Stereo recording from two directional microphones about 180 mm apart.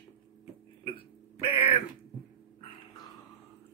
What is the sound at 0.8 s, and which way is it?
Burping, 30° left (ahead or behind).